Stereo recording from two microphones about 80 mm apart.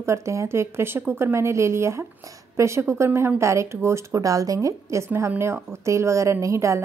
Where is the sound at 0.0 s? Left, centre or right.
Right.